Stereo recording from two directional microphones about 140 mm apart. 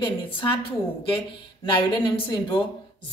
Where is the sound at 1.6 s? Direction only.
35° left (ahead or behind).